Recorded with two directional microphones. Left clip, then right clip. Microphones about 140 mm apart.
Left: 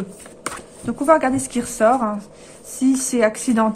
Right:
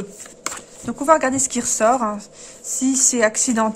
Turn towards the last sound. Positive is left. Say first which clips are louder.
# even
turn(degrees=-30)  # may be behind; listen again after turning